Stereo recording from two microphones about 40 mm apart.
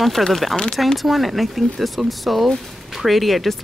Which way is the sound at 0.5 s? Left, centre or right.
Centre.